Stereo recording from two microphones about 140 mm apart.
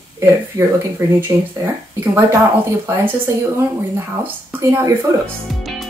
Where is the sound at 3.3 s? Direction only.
20° right (ahead or behind).